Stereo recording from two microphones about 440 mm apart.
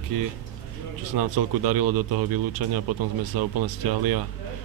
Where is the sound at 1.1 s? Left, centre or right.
Right.